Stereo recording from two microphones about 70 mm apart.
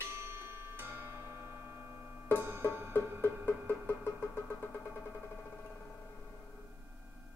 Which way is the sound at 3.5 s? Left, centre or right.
Left.